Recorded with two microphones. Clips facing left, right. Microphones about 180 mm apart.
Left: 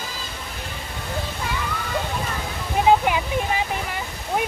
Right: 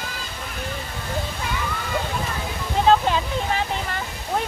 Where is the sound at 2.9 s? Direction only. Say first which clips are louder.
Even; 15° left (ahead or behind).